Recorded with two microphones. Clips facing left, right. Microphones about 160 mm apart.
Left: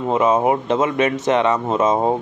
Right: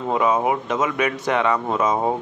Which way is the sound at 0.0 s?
20° left (ahead or behind).